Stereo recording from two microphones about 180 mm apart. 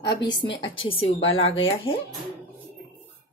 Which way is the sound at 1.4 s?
30° left (ahead or behind).